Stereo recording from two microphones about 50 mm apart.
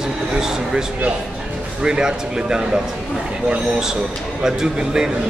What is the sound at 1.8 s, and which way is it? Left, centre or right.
Speech, centre.